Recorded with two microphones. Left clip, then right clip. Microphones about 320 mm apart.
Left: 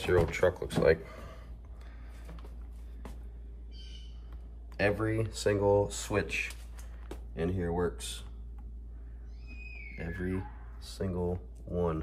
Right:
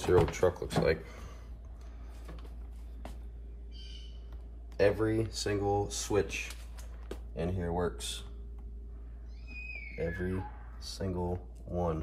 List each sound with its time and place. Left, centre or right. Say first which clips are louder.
0.0 s speech: even; centre
4.8 s speech: right 2 dB; centre
9.5 s music: right 4 dB; centre
10.9 s speech: left 1 dB; centre